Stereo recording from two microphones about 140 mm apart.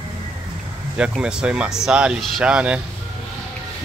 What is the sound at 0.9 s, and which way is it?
Speech, 5° right (ahead or behind).